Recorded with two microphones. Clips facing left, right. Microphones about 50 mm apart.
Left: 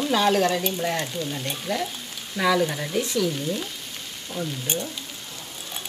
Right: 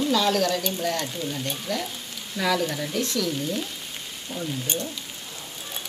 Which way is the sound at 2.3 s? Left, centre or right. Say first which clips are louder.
Left 3 dB; centre.